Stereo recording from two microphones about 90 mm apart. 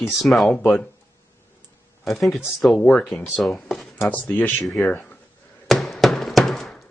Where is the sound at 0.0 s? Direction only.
Centre (ahead or behind).